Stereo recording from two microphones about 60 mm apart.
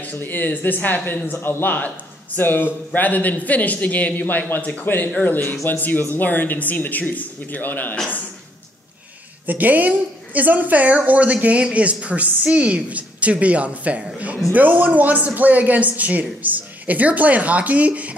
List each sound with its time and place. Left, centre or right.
0.0 s a man's voice: left
9.5 s a woman's voice: right